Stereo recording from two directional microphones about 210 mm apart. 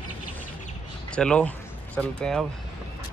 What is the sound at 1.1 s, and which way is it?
Speech, 5° left (ahead or behind).